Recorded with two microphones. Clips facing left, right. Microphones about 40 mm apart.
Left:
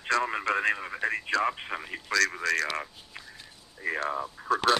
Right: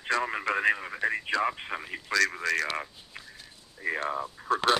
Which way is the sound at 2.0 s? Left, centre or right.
Right.